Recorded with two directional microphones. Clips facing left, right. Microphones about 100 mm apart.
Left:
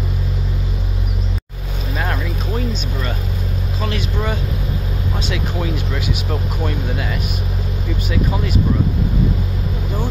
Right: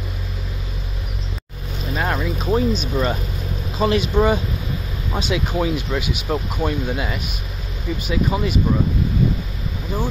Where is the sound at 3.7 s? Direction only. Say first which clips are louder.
Right 8 dB; 20° right (ahead or behind).